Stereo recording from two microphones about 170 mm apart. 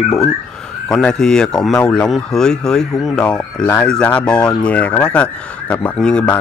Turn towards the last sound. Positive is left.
turn(degrees=5)  # may be behind; listen again after turning